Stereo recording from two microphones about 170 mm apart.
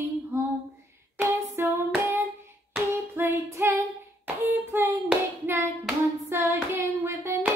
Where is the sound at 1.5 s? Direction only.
15° right (ahead or behind).